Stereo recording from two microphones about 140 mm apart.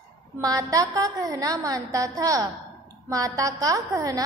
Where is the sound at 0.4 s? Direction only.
25° right (ahead or behind).